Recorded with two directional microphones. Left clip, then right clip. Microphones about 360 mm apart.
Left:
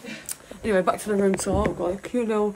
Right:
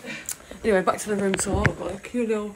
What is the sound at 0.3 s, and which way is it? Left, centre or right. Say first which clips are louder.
Speech: right 2 dB; centre.